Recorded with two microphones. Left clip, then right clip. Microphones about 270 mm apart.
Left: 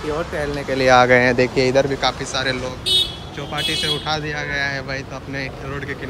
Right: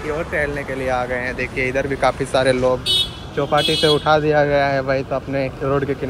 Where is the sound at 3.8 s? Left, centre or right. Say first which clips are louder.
Right 7 dB; centre.